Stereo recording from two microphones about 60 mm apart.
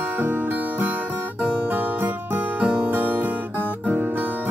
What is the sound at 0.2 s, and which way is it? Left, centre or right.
Music, right.